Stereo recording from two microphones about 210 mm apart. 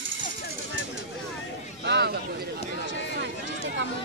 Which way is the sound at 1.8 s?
50° right (ahead or behind).